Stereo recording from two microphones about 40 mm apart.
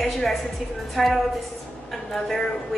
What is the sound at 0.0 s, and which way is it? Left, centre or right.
A woman's voice, centre.